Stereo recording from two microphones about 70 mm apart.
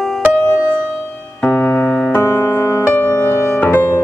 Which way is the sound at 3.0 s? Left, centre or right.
Left.